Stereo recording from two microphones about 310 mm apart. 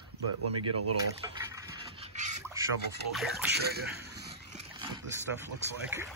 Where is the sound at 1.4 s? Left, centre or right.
Centre.